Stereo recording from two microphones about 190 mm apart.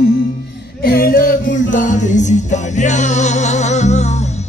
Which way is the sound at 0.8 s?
50° left (ahead or behind).